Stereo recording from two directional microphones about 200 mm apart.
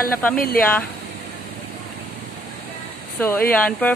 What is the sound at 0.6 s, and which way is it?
Speech, 5° left (ahead or behind).